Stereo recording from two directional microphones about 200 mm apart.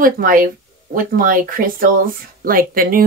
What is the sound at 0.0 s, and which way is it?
Speech, 45° right (ahead or behind).